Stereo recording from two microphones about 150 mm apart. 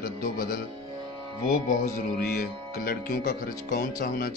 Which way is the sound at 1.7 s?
75° left (ahead or behind).